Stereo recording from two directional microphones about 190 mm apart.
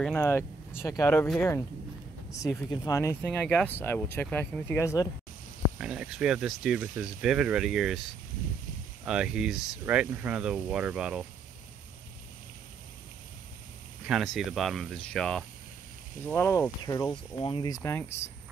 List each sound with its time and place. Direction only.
0.0 s speech: 10° left (ahead or behind)
2.7 s speech: 20° left (ahead or behind)
5.8 s speech: 5° right (ahead or behind)
9.0 s speech: 5° right (ahead or behind)
14.0 s speech: centre (ahead or behind)